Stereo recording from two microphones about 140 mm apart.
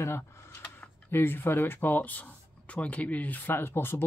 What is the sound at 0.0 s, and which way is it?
Speech, 20° left (ahead or behind).